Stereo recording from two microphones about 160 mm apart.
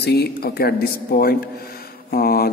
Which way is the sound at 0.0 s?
90° left.